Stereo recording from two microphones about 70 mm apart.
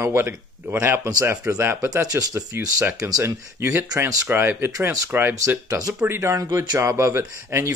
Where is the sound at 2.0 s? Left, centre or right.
Right.